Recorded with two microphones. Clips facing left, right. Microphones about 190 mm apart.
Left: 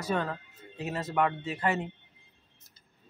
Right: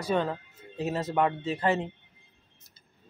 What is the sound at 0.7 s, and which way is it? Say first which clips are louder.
Speech: right 2 dB; 35° right (ahead or behind).